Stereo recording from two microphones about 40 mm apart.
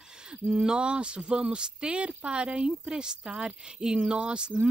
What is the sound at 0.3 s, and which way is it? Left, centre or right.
Speech, right.